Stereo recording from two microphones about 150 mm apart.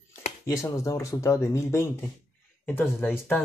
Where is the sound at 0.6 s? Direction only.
20° left (ahead or behind).